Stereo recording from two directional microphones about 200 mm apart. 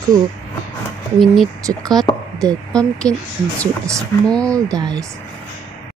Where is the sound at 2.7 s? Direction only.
5° left (ahead or behind).